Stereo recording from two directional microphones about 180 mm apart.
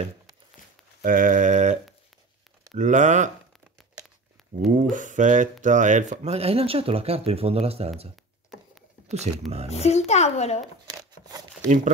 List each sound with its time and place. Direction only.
1.0 s sheep: 50° right (ahead or behind)
2.7 s speech: 40° right (ahead or behind)
4.6 s speech: 45° right (ahead or behind)
9.3 s speech: 40° right (ahead or behind)
9.7 s speech: 35° left (ahead or behind)
11.0 s a sound: 20° right (ahead or behind)